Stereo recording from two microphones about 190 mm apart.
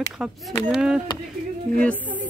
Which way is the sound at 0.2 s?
Centre (ahead or behind).